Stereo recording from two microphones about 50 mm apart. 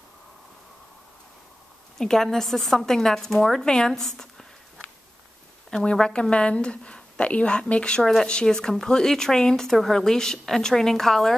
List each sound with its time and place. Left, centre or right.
2.0 s speech: centre
5.7 s a woman's voice: centre